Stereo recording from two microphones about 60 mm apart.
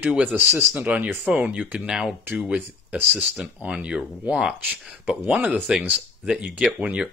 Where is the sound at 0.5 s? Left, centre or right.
Right.